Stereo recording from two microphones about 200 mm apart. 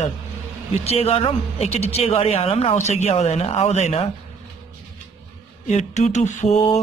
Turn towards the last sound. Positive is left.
turn(degrees=35)  # may be behind; listen again after turning